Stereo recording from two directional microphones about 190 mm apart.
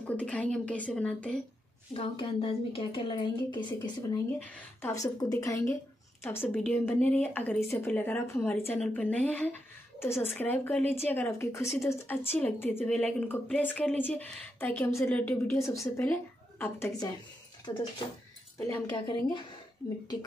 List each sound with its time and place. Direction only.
0.0 s a woman's voice: 5° left (ahead or behind)
2.0 s a woman's voice: 30° left (ahead or behind)
18.7 s speech: 20° left (ahead or behind)